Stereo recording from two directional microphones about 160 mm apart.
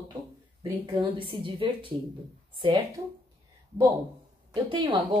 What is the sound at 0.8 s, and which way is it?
A woman's voice, 30° right (ahead or behind).